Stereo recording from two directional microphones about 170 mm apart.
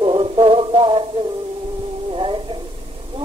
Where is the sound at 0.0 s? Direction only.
30° right (ahead or behind).